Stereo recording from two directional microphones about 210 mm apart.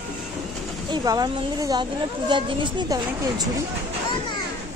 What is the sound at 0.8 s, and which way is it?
Speech, 20° right (ahead or behind).